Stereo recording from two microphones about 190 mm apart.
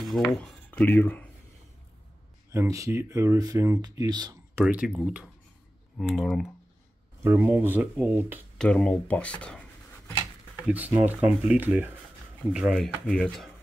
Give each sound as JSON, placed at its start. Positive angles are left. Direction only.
{"t": 0.0, "sound": "a sound", "side_deg": 0}
{"t": 0.4, "sound": "speech", "side_deg": 5}
{"t": 2.5, "sound": "speech", "side_deg": -15}
{"t": 4.6, "sound": "speech", "side_deg": -5}
{"t": 7.2, "sound": "speech", "side_deg": -15}
{"t": 8.5, "sound": "writing", "side_deg": 5}
{"t": 10.7, "sound": "speech", "side_deg": -10}